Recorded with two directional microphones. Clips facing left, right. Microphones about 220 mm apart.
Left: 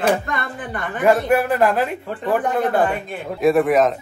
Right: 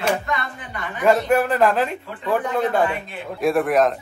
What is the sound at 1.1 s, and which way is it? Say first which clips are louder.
A man's voice: left 1 dB; 15° left (ahead or behind).